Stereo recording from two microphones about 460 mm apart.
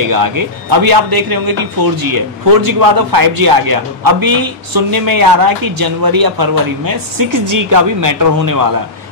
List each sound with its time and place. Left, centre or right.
0.1 s a man's voice: right